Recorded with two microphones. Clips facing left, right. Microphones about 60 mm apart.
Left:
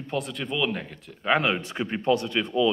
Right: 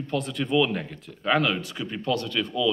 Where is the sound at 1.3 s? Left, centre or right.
Left.